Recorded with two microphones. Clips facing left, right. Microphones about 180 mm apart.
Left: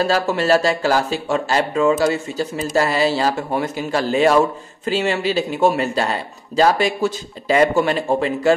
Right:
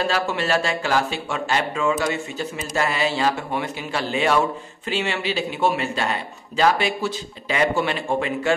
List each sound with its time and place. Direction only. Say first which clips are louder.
0.0 s a man's voice: left 5 dB; 40° left (ahead or behind)